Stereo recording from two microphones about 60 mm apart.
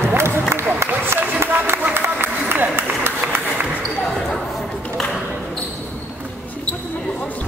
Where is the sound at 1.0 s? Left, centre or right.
Right.